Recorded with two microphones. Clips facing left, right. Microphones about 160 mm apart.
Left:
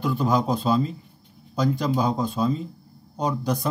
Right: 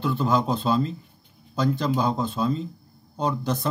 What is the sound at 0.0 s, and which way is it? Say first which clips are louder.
Speech: even; 10° left (ahead or behind).